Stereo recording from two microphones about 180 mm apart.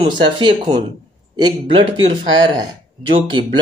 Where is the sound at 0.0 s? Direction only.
25° right (ahead or behind).